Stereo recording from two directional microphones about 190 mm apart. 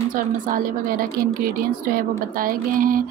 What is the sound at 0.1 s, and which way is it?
A woman's voice, 50° right (ahead or behind).